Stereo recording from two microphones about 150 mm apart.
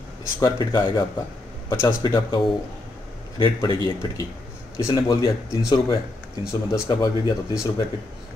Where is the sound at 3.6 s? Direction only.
30° left (ahead or behind).